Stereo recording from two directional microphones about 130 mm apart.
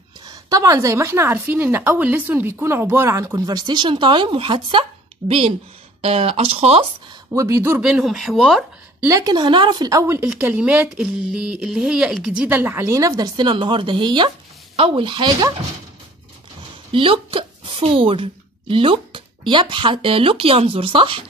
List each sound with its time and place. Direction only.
0.2 s speech: 30° right (ahead or behind); by 6.9 s 50° right (ahead or behind)
7.3 s speech: 20° right (ahead or behind)
7.9 s speech: 5° right (ahead or behind)
9.0 s speech: 25° right (ahead or behind)
10.4 s speech: 10° right (ahead or behind); by 15.5 s 35° right (ahead or behind)
16.9 s speech: 40° right (ahead or behind)